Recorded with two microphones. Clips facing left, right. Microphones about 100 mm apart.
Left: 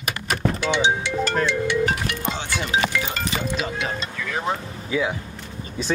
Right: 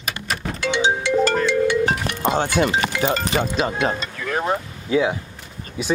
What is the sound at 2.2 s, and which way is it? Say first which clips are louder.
Speech: right 8 dB; 50° right (ahead or behind).